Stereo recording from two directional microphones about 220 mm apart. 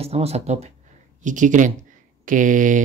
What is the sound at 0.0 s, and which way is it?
Speech, 25° right (ahead or behind).